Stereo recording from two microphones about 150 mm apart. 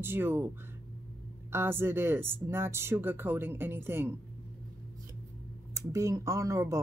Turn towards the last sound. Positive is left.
turn(degrees=-20)  # may be behind; listen again after turning